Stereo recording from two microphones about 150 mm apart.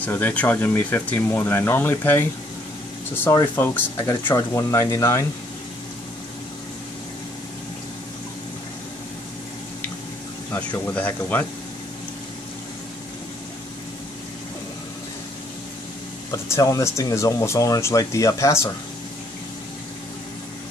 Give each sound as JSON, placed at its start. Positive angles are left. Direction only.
{"t": 0.0, "sound": "speech", "side_deg": 10}
{"t": 10.9, "sound": "speech", "side_deg": 10}
{"t": 16.3, "sound": "speech", "side_deg": 20}